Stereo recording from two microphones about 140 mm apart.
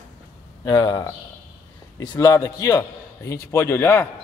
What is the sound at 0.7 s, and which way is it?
A man's voice, 30° left (ahead or behind).